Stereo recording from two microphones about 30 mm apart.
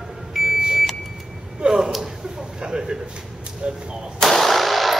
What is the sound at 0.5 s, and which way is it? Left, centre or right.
Vehicle, right.